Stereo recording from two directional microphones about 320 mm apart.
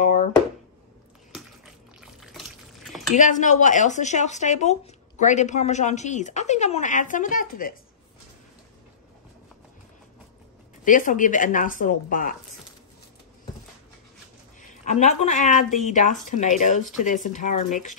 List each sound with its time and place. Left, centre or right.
2.0 s a sound: centre
3.2 s speech: left
10.8 s speech: left
14.9 s speech: left